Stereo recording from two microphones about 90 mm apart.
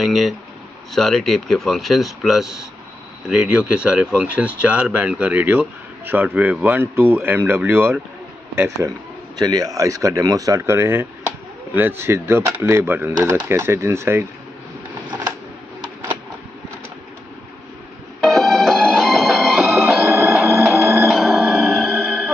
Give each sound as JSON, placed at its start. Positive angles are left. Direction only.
{"t": 0.0, "sound": "speech", "side_deg": 0}
{"t": 8.5, "sound": "speech", "side_deg": -35}
{"t": 10.6, "sound": "chop", "side_deg": -25}
{"t": 12.0, "sound": "speech", "side_deg": -25}
{"t": 18.2, "sound": "music", "side_deg": 5}